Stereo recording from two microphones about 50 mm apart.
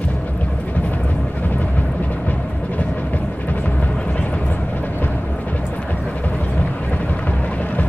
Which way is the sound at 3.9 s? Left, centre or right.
Left.